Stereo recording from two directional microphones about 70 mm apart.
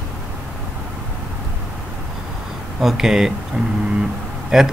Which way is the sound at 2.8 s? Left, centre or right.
Centre.